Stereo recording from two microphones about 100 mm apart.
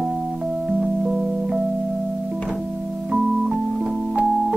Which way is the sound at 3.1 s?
10° right (ahead or behind).